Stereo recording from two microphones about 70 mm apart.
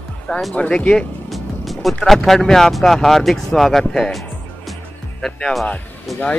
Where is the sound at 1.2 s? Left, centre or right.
Centre.